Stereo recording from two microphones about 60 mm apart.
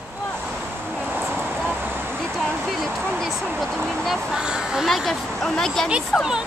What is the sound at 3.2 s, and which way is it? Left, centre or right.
Speech, centre.